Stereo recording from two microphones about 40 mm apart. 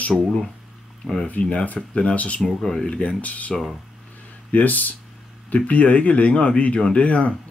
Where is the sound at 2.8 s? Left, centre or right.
Left.